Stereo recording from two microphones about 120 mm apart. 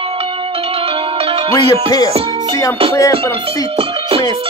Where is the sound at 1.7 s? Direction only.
30° left (ahead or behind).